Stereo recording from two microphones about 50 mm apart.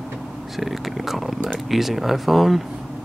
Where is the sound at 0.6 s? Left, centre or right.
Centre.